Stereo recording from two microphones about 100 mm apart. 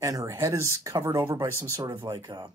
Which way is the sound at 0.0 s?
30° right (ahead or behind).